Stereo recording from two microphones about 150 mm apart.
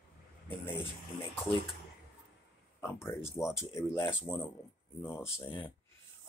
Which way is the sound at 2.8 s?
15° left (ahead or behind).